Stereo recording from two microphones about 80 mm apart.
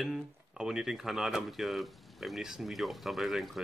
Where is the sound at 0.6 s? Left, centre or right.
Centre.